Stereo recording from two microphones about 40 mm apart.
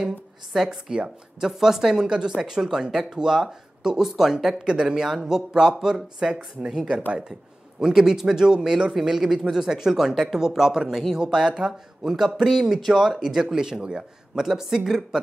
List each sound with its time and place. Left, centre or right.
0.5 s a woman's voice: centre
10.9 s a man's voice: centre
11.1 s a woman's voice: centre
12.7 s a woman's voice: centre